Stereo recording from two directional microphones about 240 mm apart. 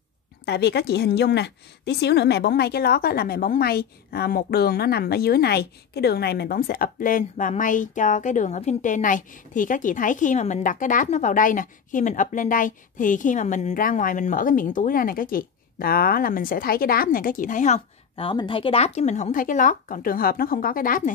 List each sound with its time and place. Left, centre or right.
0.5 s a woman's voice: left